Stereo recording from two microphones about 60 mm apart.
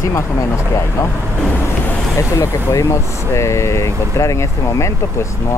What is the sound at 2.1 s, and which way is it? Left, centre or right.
Speech, left.